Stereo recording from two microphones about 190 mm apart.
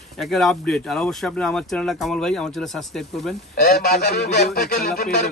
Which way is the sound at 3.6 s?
55° left (ahead or behind).